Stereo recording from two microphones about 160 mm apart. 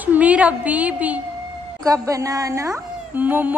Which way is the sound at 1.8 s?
20° right (ahead or behind).